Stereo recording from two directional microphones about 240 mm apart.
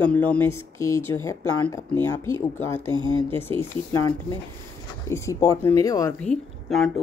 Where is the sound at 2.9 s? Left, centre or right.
Centre.